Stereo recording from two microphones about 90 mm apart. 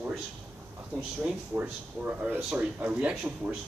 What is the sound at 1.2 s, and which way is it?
Speech, 20° right (ahead or behind).